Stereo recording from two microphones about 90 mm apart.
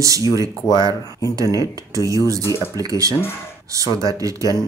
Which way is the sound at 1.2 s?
40° right (ahead or behind).